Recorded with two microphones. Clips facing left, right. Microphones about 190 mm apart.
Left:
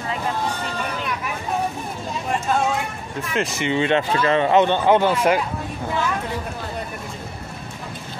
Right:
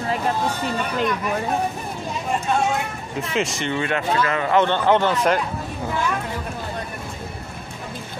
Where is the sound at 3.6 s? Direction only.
20° left (ahead or behind).